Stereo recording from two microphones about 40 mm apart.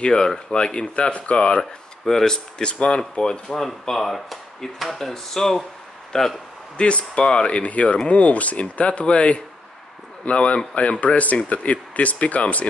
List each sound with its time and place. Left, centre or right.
0.0 s speech: centre
1.6 s speech: centre
3.6 s speech: centre
6.8 s speech: left